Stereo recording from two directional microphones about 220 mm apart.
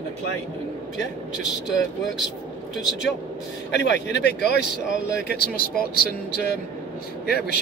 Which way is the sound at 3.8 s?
55° left (ahead or behind).